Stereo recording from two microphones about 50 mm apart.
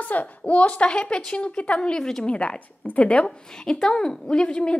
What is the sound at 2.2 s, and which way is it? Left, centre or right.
A woman's voice, left.